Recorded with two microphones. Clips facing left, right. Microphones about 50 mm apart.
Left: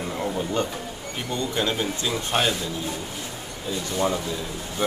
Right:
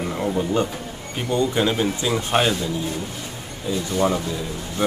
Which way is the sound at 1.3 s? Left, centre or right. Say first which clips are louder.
Right 6 dB; centre.